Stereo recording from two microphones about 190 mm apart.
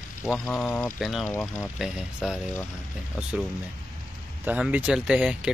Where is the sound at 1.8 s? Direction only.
5° right (ahead or behind).